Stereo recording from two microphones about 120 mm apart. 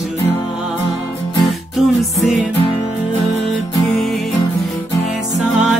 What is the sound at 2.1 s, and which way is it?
Music, centre (ahead or behind).